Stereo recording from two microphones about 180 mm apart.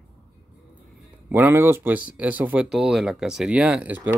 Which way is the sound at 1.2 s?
10° right (ahead or behind).